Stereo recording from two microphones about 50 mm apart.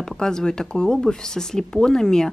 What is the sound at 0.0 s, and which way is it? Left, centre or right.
A woman's voice, centre.